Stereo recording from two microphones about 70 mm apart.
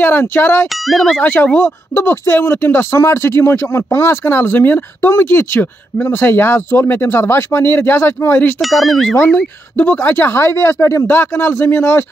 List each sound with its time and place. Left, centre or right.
0.0 s speech: left
0.7 s speech: centre
1.2 s speech: left
8.5 s speech: centre
9.9 s speech: left